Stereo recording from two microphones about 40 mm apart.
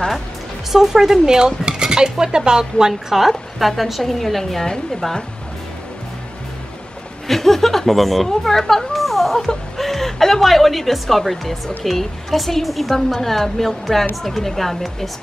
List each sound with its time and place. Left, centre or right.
0.7 s dishes: centre
2.9 s speech: centre
7.2 s speech: centre